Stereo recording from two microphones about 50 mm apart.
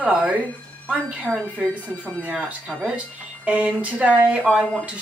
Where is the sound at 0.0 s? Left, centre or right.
Right.